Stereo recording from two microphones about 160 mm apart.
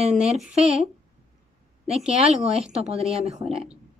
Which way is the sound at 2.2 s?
40° right (ahead or behind).